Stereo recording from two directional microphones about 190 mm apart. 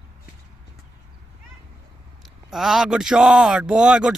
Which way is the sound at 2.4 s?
Centre (ahead or behind).